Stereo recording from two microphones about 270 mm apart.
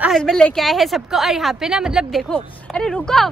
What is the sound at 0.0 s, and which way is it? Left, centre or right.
A woman's voice, centre.